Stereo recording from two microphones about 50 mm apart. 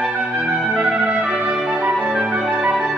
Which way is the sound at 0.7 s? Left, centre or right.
Right.